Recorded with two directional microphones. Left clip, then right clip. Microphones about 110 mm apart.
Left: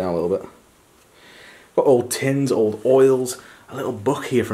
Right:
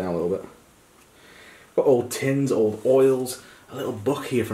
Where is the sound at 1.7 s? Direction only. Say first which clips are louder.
Left 3 dB; 25° left (ahead or behind).